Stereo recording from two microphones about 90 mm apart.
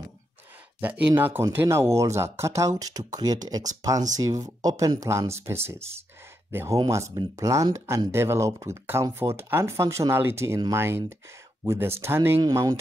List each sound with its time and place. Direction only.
0.7 s speech: 20° right (ahead or behind)